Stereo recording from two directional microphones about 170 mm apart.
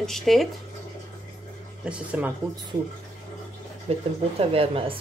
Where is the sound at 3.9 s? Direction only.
35° right (ahead or behind).